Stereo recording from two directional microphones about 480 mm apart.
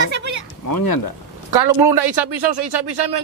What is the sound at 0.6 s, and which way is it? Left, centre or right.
Speech, left.